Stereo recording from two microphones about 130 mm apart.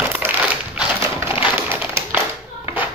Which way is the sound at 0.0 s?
15° right (ahead or behind).